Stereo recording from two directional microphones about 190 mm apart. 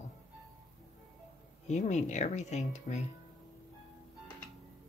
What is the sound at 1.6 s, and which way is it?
Speech, 35° left (ahead or behind).